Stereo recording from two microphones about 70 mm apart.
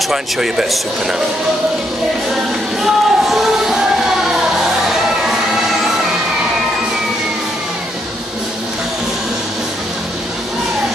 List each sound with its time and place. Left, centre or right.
0.1 s speech: centre
2.8 s music: centre